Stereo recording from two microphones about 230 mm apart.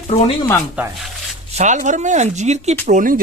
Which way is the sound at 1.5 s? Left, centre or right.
Right.